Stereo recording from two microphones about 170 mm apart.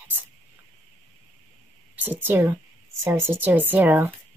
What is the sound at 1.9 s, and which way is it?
Speech, 10° right (ahead or behind).